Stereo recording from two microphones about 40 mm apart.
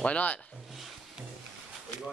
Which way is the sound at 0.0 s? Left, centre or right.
Left.